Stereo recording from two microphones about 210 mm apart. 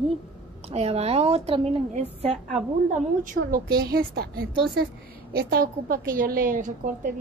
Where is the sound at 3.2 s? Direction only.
40° right (ahead or behind).